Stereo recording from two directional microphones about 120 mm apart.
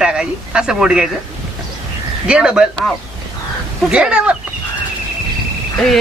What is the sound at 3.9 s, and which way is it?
Speech, 10° right (ahead or behind).